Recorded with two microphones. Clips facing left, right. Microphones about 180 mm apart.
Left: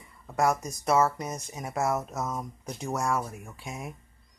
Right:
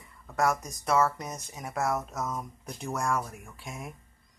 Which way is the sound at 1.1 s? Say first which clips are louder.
Left 4 dB; 5° left (ahead or behind).